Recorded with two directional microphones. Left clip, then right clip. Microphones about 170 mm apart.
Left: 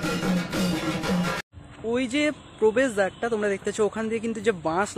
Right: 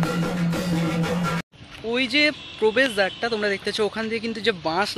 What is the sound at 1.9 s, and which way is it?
Speech, 10° left (ahead or behind).